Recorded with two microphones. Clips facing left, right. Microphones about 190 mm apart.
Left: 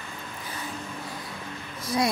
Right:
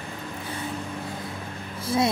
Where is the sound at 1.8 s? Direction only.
25° right (ahead or behind).